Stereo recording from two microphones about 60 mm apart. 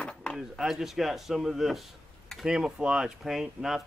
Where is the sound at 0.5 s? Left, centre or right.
Centre.